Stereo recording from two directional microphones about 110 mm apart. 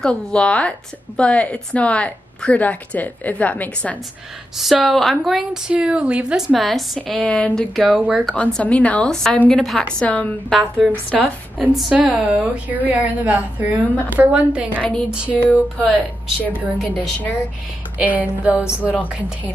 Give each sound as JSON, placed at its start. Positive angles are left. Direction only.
{"t": 0.0, "sound": "a woman's voice", "side_deg": 10}
{"t": 4.6, "sound": "a woman's voice", "side_deg": 0}
{"t": 7.0, "sound": "a woman's voice", "side_deg": 10}
{"t": 7.8, "sound": "a woman's voice", "side_deg": -10}
{"t": 8.3, "sound": "a woman's voice", "side_deg": 10}
{"t": 11.5, "sound": "a woman's voice", "side_deg": -10}
{"t": 13.9, "sound": "a woman's voice", "side_deg": 15}
{"t": 14.2, "sound": "a woman's voice", "side_deg": -10}
{"t": 14.8, "sound": "a woman's voice", "side_deg": 10}
{"t": 15.0, "sound": "a woman's voice", "side_deg": -10}
{"t": 16.7, "sound": "a woman's voice", "side_deg": 0}
{"t": 17.9, "sound": "a woman's voice", "side_deg": -15}